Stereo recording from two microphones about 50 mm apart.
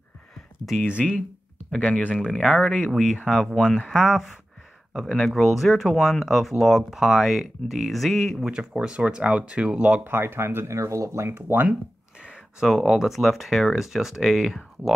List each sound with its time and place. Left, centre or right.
0.7 s speech: centre
1.7 s speech: centre
3.9 s speech: centre
8.5 s speech: centre
10.0 s speech: right
11.2 s speech: right
12.2 s a sound: centre
12.6 s speech: centre